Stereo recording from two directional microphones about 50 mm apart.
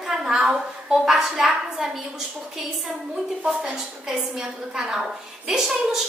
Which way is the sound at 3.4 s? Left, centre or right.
Centre.